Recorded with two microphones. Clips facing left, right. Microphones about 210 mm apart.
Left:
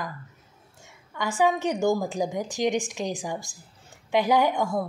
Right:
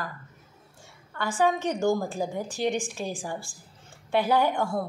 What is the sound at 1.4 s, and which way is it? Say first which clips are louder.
A woman's voice: left 1 dB; 10° left (ahead or behind).